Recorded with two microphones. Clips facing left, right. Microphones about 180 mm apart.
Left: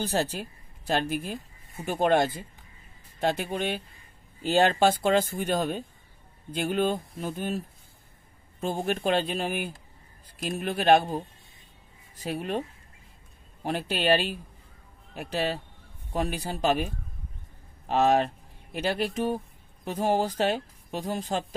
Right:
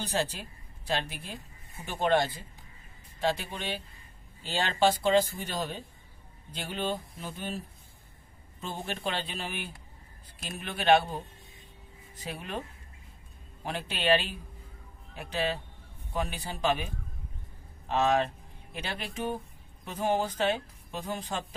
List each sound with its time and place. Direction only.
0.0 s speech: 45° left (ahead or behind)
12.2 s a man's voice: 40° left (ahead or behind)
13.7 s a man's voice: 40° left (ahead or behind)
17.8 s a man's voice: 40° left (ahead or behind)